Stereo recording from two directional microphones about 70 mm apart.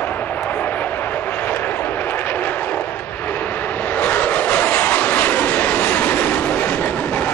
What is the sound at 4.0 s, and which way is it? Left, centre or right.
Vehicle, left.